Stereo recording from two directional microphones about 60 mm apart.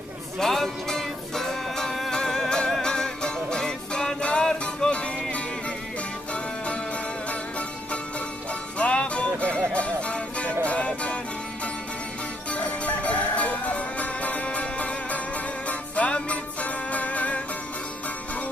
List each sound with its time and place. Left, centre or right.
0.4 s music: centre
12.4 s music: left